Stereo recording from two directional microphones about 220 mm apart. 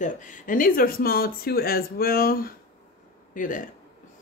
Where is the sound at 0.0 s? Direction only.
35° left (ahead or behind).